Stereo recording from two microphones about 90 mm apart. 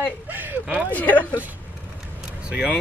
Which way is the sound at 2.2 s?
10° right (ahead or behind).